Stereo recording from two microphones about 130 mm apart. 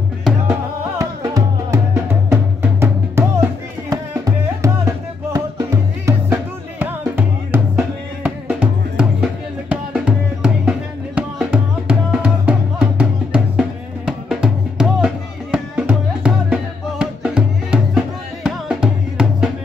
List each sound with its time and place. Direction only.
0.9 s music: 25° right (ahead or behind)
4.6 s music: 20° right (ahead or behind); by 19.5 s 5° right (ahead or behind)